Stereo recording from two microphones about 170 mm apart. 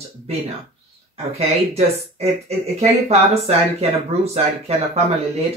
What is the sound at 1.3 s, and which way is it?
Speech, 35° right (ahead or behind).